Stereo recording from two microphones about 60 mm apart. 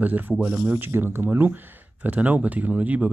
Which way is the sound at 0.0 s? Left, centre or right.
Right.